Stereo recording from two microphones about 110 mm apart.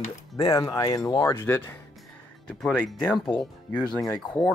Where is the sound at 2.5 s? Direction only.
10° left (ahead or behind).